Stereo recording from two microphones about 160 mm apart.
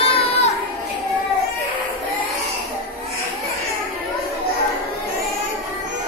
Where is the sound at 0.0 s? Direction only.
35° left (ahead or behind).